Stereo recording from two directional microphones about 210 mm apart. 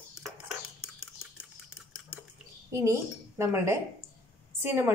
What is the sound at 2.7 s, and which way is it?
A woman's voice, 15° right (ahead or behind).